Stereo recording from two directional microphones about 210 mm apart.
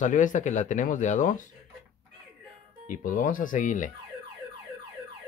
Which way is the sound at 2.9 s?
40° left (ahead or behind).